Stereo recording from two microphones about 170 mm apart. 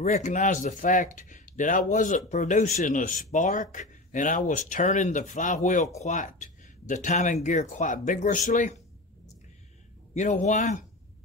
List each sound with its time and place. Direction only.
0.0 s speech: 45° left (ahead or behind)
10.1 s speech: 45° left (ahead or behind)